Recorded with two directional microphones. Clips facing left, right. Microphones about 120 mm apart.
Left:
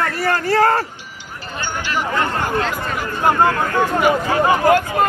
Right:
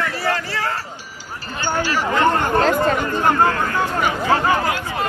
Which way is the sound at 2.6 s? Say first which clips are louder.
Right 6 dB; 40° right (ahead or behind).